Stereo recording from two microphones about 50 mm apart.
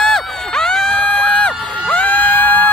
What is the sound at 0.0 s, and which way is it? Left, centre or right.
Crowd, centre.